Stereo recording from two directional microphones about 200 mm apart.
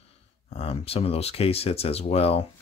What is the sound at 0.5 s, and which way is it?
Speech, 30° left (ahead or behind).